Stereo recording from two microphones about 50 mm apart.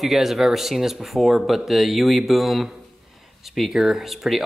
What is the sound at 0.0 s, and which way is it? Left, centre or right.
Speech, centre.